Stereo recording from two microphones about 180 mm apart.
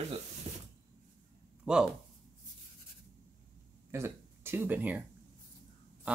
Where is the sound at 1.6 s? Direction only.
5° right (ahead or behind).